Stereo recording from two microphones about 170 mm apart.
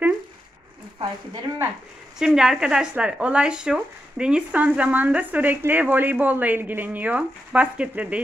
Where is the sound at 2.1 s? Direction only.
5° right (ahead or behind).